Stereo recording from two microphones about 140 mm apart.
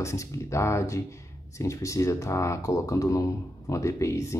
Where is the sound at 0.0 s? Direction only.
20° left (ahead or behind).